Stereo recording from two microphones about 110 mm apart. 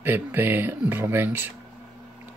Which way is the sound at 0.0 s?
15° right (ahead or behind).